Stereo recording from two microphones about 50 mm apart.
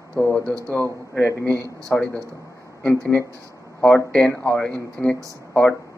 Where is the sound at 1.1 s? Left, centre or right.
Left.